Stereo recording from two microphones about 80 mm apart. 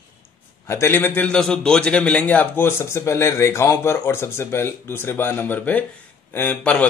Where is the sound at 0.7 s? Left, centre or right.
Left.